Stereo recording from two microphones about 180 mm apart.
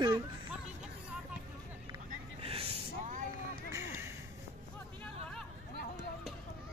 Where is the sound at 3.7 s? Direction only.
15° right (ahead or behind).